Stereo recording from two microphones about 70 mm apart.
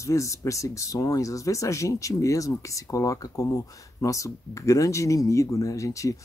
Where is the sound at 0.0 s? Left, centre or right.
Left.